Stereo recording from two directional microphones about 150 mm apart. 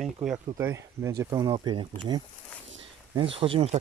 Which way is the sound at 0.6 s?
20° right (ahead or behind).